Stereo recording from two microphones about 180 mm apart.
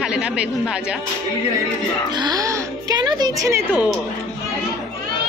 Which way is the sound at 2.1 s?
20° right (ahead or behind).